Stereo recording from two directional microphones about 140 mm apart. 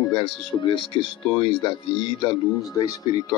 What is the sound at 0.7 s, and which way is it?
Speech, 40° left (ahead or behind).